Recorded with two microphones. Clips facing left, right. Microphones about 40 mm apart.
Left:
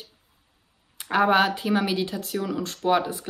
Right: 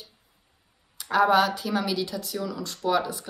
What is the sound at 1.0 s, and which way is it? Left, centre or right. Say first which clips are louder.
Speech: even; left.